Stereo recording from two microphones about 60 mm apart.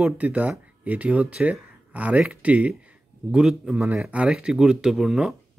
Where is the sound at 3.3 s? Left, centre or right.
Centre.